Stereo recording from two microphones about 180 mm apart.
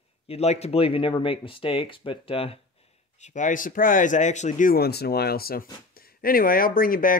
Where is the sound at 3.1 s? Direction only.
40° left (ahead or behind).